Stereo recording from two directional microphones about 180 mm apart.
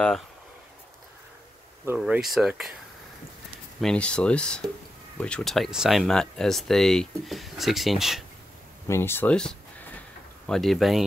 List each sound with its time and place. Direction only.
2.0 s speech: 5° right (ahead or behind)
3.8 s speech: 5° left (ahead or behind)
8.8 s speech: 15° left (ahead or behind); by 11.1 s centre (ahead or behind)